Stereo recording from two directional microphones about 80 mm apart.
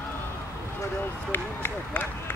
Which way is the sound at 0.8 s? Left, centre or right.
Left.